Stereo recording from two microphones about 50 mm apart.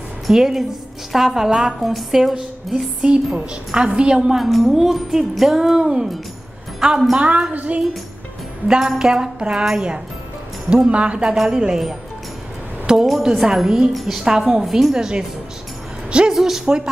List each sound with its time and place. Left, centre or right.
0.3 s a woman's voice: centre
1.8 s music: centre
3.0 s a woman's voice: centre
4.4 s music: centre
5.6 s a woman's voice: centre
7.2 s a woman's voice: right
8.6 s a woman's voice: centre
13.0 s a woman's voice: centre; by 16.3 s right
16.3 s a woman's voice: centre